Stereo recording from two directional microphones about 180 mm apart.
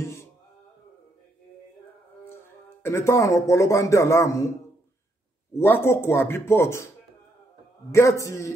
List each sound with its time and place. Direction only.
0.0 s music: 15° left (ahead or behind)
2.2 s speech: 15° left (ahead or behind)
5.5 s a man's voice: 15° left (ahead or behind)
7.9 s a man's voice: 15° left (ahead or behind)